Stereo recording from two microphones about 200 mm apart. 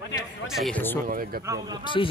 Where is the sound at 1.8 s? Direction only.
25° left (ahead or behind).